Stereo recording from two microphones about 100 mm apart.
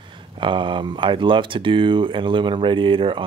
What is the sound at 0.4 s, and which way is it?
Speech, 55° right (ahead or behind).